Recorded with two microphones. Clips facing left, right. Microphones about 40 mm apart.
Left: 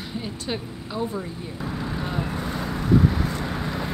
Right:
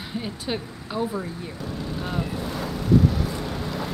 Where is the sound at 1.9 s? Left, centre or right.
Centre.